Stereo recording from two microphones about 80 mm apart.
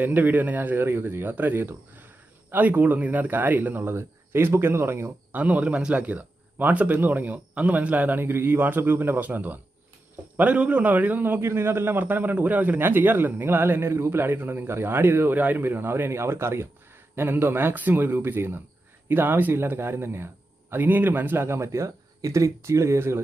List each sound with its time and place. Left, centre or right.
0.0 s a man's voice: right
5.3 s a man's voice: centre